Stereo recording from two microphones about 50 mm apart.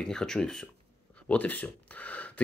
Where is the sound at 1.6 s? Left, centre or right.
Left.